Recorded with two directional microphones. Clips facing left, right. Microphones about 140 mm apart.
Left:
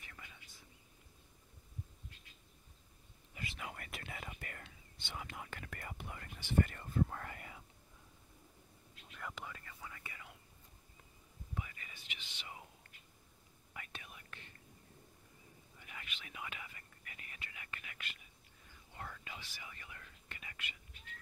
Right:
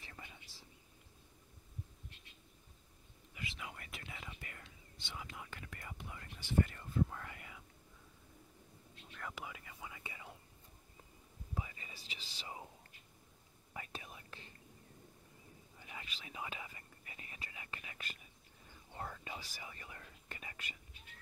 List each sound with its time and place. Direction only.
0.0 s whispering: 30° right (ahead or behind)
3.3 s whispering: 55° left (ahead or behind)
9.1 s whispering: centre (ahead or behind); by 10.3 s 20° right (ahead or behind)
11.5 s whispering: 25° right (ahead or behind)
13.7 s whispering: 30° right (ahead or behind)
15.8 s whispering: 25° right (ahead or behind)